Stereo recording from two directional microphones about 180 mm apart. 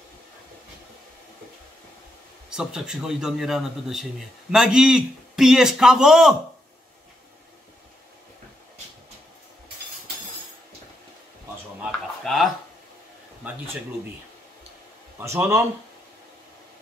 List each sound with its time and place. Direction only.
2.5 s a man's voice: 5° right (ahead or behind)
11.8 s a sound: centre (ahead or behind)
15.1 s speech: 15° right (ahead or behind)